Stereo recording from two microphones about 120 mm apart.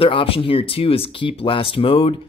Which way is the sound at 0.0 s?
50° left (ahead or behind).